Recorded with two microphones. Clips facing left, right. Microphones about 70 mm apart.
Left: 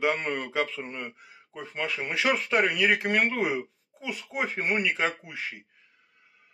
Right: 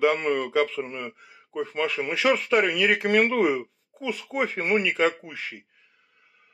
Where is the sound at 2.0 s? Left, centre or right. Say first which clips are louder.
Right 2 dB; left.